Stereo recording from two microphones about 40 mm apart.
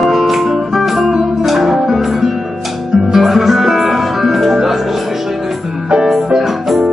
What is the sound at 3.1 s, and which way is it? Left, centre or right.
Music, centre.